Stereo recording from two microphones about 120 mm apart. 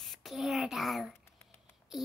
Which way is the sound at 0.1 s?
Centre (ahead or behind).